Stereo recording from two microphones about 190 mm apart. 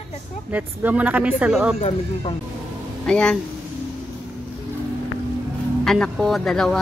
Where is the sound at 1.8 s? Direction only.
30° left (ahead or behind).